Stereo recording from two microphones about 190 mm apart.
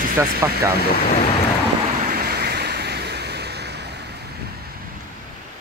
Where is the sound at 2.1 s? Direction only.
55° right (ahead or behind).